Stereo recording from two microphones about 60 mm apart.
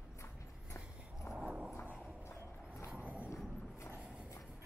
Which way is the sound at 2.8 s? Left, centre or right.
Right.